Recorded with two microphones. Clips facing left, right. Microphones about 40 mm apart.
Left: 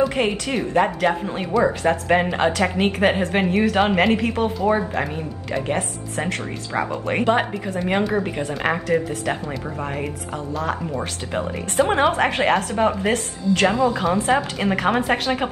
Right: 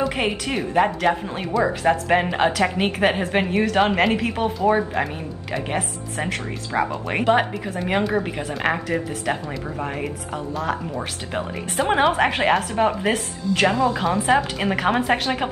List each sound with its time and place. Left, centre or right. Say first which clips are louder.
0.0 s speech: left 2 dB; centre